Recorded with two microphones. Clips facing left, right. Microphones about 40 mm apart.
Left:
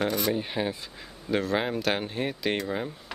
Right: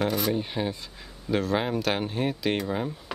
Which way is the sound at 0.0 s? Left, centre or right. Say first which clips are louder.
Right 1 dB; centre.